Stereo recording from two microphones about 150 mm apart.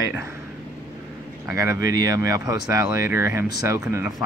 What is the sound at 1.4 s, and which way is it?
Speech, 20° right (ahead or behind).